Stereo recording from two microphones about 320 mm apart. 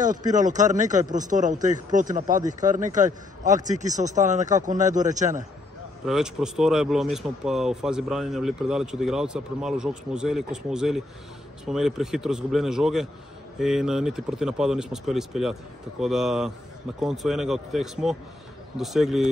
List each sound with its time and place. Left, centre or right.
0.3 s speech: right
6.0 s speech: centre